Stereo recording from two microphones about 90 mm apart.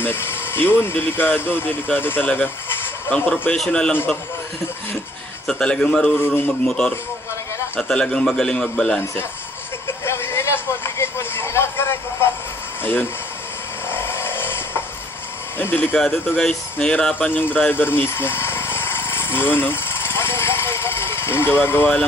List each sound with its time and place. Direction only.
0.0 s speech: 25° left (ahead or behind)
2.2 s bleat: 20° left (ahead or behind)
3.3 s a man's voice: 10° left (ahead or behind)
5.5 s a man's voice: 10° left (ahead or behind)
6.1 s speech: 20° left (ahead or behind)
7.9 s a man's voice: 10° left (ahead or behind)
9.8 s a sound: 30° left (ahead or behind)
12.8 s speech: 25° left (ahead or behind)
13.8 s vehicle: 25° left (ahead or behind)
15.5 s speech: 25° left (ahead or behind)
16.8 s vehicle: 10° left (ahead or behind); by 21.9 s 25° left (ahead or behind)